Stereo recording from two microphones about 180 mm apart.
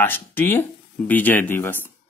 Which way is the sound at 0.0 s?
10° left (ahead or behind).